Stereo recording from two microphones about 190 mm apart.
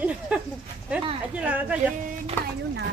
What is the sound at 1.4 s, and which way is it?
Speech, 5° right (ahead or behind).